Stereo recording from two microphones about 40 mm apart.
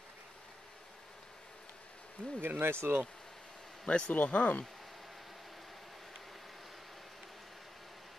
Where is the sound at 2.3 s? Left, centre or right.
Right.